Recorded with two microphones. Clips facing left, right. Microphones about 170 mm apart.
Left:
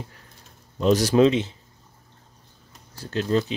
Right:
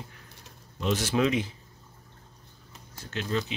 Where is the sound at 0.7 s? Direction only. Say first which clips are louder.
Left 9 dB; 40° left (ahead or behind).